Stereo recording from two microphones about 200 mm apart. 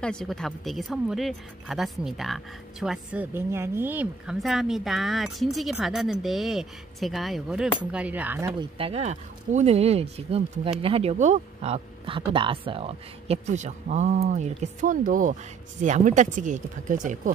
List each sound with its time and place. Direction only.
0.0 s speech: 5° left (ahead or behind); by 8.6 s 15° right (ahead or behind)
8.7 s speech: 30° right (ahead or behind)